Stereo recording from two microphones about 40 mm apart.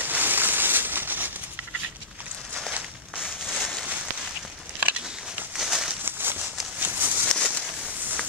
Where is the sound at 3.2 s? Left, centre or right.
Centre.